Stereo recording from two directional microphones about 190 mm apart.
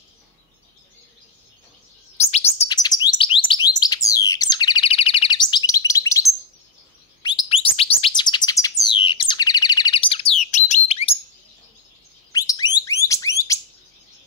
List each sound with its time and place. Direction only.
2.3 s chirp: 35° left (ahead or behind)
2.7 s bird: 20° left (ahead or behind)
7.2 s bird: 30° left (ahead or behind)
10.4 s bird: 40° left (ahead or behind)
12.3 s alarm: 20° left (ahead or behind)